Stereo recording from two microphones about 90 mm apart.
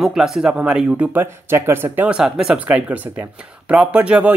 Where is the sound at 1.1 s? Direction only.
25° right (ahead or behind).